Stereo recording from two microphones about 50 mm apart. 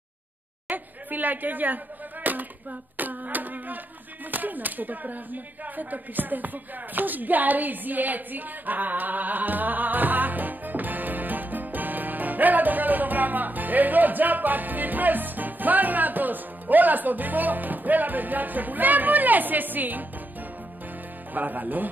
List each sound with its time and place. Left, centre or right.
0.7 s a woman's voice: right
2.3 s a sound: right
3.0 s speech: right
21.3 s speech: right